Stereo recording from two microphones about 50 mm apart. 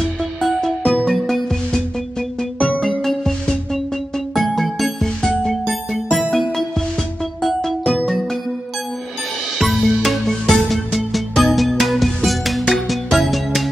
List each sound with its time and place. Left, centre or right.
0.2 s music: centre
3.0 s music: centre
9.6 s music: centre